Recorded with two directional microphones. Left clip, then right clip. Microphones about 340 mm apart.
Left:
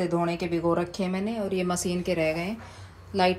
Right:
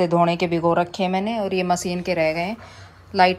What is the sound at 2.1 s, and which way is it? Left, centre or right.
Speech, centre.